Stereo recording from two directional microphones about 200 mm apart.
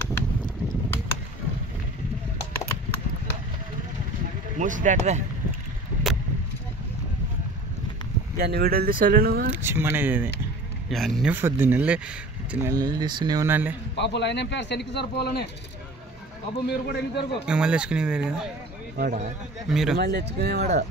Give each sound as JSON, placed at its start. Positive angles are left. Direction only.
{"t": 4.6, "sound": "speech", "side_deg": -40}
{"t": 8.4, "sound": "speech", "side_deg": -50}
{"t": 9.5, "sound": "speech", "side_deg": -10}
{"t": 10.9, "sound": "speech", "side_deg": 0}
{"t": 11.3, "sound": "speech", "side_deg": -10}
{"t": 13.9, "sound": "speech", "side_deg": 60}
{"t": 16.6, "sound": "speech", "side_deg": 55}
{"t": 17.5, "sound": "speech", "side_deg": -5}
{"t": 18.9, "sound": "speech", "side_deg": -40}
{"t": 19.7, "sound": "speech", "side_deg": 0}
{"t": 20.0, "sound": "speech", "side_deg": -55}